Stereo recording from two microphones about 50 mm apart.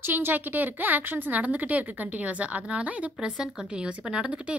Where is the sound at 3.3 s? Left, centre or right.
Centre.